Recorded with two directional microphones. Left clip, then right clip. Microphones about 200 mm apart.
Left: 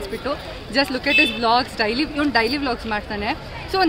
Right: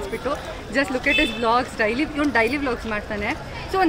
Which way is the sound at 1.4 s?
40° left (ahead or behind).